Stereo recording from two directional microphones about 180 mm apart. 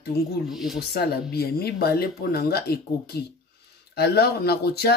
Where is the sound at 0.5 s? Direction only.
Centre (ahead or behind).